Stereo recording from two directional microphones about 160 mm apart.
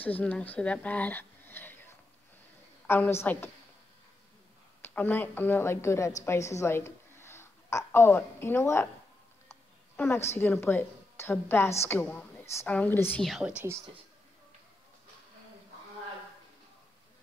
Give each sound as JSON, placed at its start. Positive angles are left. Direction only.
{"t": 0.0, "sound": "speech", "side_deg": 10}
{"t": 2.9, "sound": "a woman's voice", "side_deg": 15}
{"t": 4.8, "sound": "a woman's voice", "side_deg": 10}
{"t": 9.5, "sound": "a sound", "side_deg": 15}
{"t": 10.3, "sound": "a woman's voice", "side_deg": 15}
{"t": 13.2, "sound": "speech", "side_deg": 0}